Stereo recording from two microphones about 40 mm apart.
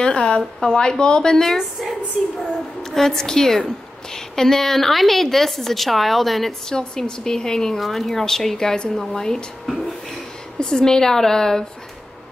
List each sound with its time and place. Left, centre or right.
0.0 s a sound: left
0.6 s a woman's voice: centre
1.6 s a woman's voice: centre
7.0 s a woman's voice: centre
7.7 s a woman's voice: centre
10.6 s a woman's voice: centre